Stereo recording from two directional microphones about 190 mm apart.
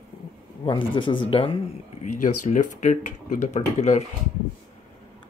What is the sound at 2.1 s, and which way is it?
Speech, 40° left (ahead or behind).